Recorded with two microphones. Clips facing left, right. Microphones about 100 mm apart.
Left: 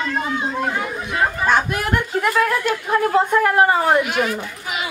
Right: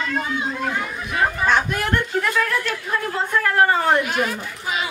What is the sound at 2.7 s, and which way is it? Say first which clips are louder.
A woman's voice: left 7 dB; 30° left (ahead or behind).